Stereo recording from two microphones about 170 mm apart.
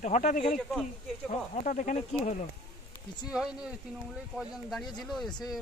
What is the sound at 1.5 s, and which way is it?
Speech, 50° left (ahead or behind).